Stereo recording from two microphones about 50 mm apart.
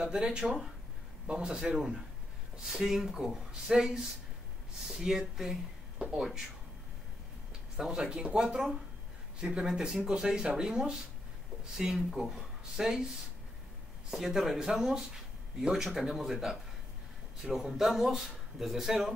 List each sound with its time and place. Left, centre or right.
0.0 s speech: centre
7.7 s speech: centre
14.1 s speech: centre